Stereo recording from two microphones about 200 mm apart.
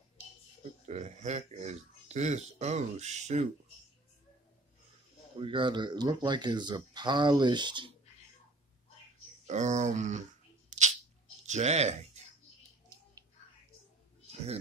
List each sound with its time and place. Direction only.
0.8 s speech: 35° right (ahead or behind)
5.4 s speech: 25° right (ahead or behind)
9.5 s speech: 35° right (ahead or behind)
10.7 s a sound: 35° right (ahead or behind)
11.4 s speech: 35° right (ahead or behind)